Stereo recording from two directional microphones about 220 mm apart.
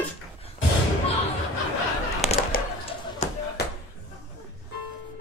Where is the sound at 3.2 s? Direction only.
30° left (ahead or behind).